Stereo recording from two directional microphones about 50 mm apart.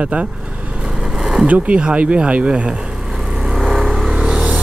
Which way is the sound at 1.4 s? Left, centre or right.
Right.